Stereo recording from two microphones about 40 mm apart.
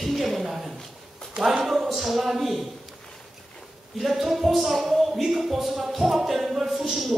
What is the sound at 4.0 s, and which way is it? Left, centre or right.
A man's voice, centre.